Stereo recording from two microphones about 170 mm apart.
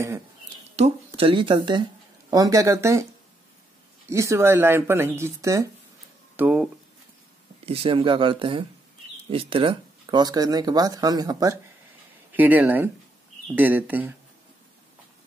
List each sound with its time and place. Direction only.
0.7 s speech: 35° right (ahead or behind); by 3.1 s 15° right (ahead or behind)
4.1 s speech: 15° right (ahead or behind)
6.3 s speech: 10° right (ahead or behind)
7.6 s speech: 35° right (ahead or behind)
12.4 s speech: 10° right (ahead or behind)